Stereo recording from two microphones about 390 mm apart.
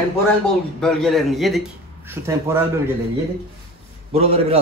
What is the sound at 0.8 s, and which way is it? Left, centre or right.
A man's voice, centre.